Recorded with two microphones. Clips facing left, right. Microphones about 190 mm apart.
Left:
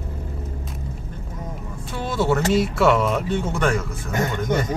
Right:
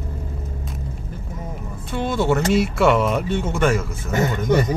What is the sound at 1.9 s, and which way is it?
Speech, centre (ahead or behind).